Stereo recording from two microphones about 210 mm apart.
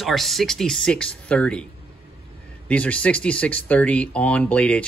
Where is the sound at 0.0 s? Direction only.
Centre (ahead or behind).